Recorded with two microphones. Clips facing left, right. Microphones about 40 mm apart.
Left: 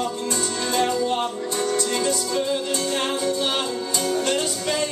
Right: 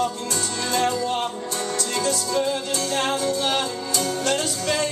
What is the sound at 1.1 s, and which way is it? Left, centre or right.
Music, centre.